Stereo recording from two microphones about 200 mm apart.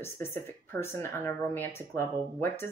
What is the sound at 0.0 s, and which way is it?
Speech, 10° left (ahead or behind).